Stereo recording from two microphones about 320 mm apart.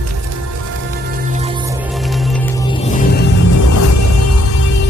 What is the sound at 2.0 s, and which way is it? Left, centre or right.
Music, centre.